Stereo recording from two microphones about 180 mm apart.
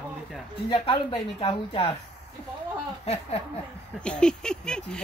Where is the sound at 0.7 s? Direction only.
30° left (ahead or behind).